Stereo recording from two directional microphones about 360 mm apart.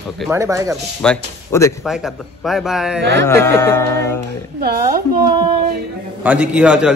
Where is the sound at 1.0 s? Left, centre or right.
Centre.